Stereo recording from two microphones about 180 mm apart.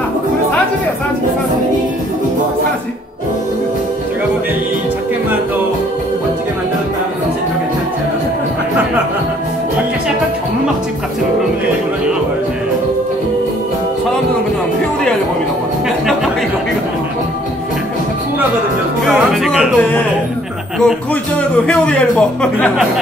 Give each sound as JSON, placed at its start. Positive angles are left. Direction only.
{"t": 19.0, "sound": "music", "side_deg": 0}
{"t": 20.8, "sound": "a man's voice", "side_deg": 5}